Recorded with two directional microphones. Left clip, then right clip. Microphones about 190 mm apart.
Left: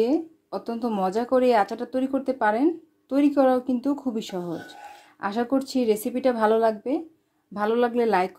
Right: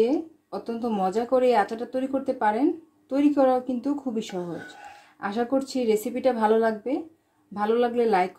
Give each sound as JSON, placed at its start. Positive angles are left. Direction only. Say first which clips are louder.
{"t": 0.0, "sound": "speech", "louder": "even", "side_deg": 45}